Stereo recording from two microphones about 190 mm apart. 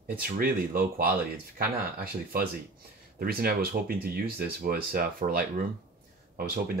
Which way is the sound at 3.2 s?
50° right (ahead or behind).